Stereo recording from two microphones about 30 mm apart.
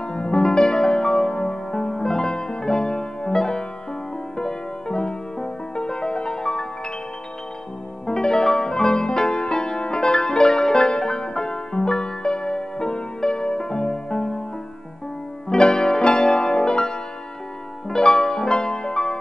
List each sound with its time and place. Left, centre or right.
0.0 s music: left
8.1 s music: left
15.5 s piano: left
17.8 s music: left